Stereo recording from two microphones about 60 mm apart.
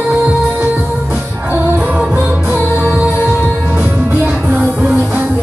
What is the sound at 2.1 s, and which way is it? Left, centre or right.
Music, right.